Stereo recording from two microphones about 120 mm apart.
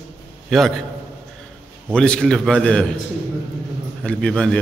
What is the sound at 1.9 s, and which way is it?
A man's voice, 5° left (ahead or behind).